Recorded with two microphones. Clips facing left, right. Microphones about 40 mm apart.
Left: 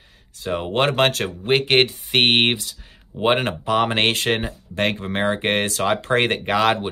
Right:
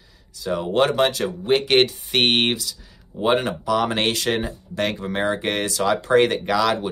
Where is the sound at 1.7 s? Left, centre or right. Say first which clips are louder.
Even; left.